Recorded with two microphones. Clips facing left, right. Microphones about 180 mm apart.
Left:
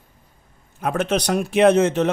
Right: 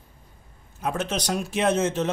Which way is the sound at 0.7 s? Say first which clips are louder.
Left 6 dB; 60° left (ahead or behind).